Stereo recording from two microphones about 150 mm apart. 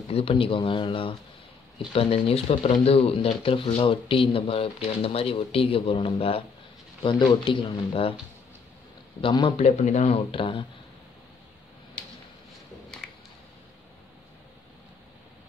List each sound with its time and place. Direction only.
0.1 s speech: 40° left (ahead or behind)
9.2 s speech: 30° left (ahead or behind)
9.6 s speech: 50° left (ahead or behind)
12.9 s a sound: 5° left (ahead or behind)